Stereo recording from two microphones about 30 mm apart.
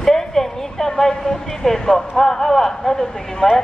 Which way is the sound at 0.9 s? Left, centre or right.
Centre.